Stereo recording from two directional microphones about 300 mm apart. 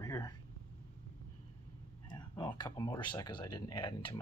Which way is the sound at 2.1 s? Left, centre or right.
Centre.